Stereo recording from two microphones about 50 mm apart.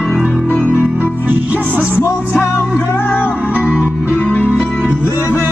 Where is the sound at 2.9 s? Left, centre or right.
Left.